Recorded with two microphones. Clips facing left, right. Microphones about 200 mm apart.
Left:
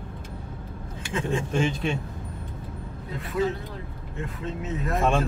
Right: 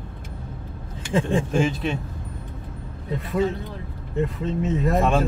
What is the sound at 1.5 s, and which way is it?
Speech, 5° right (ahead or behind).